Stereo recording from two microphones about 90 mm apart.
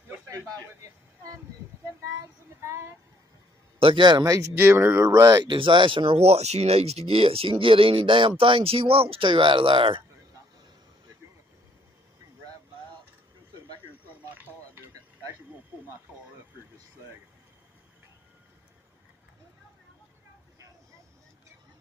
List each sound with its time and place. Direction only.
2.6 s speech: 30° right (ahead or behind)
3.8 s a man's voice: 60° right (ahead or behind)
4.6 s speech: 25° right (ahead or behind)
5.1 s speech: 40° right (ahead or behind)
5.4 s speech: 65° right (ahead or behind)
14.3 s a sound: 20° right (ahead or behind)